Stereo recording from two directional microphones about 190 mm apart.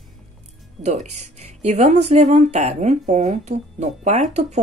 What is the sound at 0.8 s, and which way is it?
Speech, 35° right (ahead or behind).